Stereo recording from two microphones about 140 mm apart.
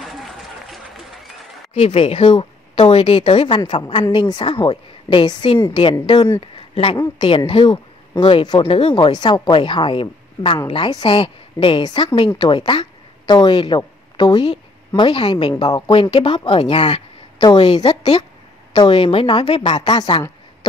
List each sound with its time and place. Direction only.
0.0 s run: centre (ahead or behind)
1.7 s speech: 45° left (ahead or behind); by 6.3 s 30° left (ahead or behind)
6.4 s a woman's voice: 40° left (ahead or behind)